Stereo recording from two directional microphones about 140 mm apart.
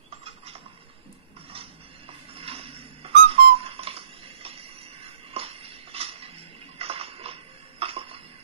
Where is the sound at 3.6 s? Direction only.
45° right (ahead or behind).